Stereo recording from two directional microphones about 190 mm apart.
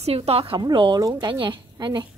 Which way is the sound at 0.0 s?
35° right (ahead or behind).